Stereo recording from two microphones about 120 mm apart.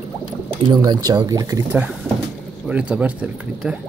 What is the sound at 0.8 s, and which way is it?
Speech, 35° right (ahead or behind).